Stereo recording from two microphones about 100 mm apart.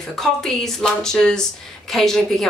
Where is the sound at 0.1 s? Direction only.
5° left (ahead or behind).